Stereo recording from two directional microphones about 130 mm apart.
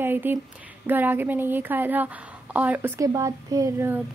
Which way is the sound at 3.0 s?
25° right (ahead or behind).